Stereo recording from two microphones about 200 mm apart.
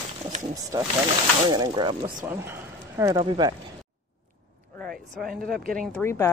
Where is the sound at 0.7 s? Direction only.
15° right (ahead or behind).